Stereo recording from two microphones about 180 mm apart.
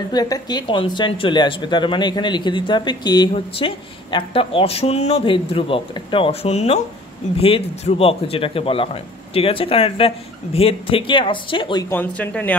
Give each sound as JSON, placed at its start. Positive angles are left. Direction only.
{"t": 0.1, "sound": "a man's voice", "side_deg": 20}
{"t": 11.9, "sound": "speech", "side_deg": 10}